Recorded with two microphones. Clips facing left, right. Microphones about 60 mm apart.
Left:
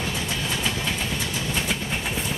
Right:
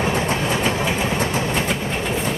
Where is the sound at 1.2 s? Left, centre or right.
Right.